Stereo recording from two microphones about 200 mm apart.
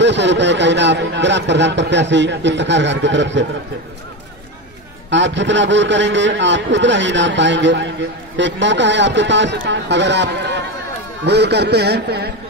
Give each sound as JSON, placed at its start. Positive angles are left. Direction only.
{"t": 0.0, "sound": "speech", "side_deg": -60}
{"t": 5.1, "sound": "speech", "side_deg": -65}